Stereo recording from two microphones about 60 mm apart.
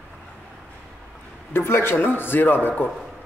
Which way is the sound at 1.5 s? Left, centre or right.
Left.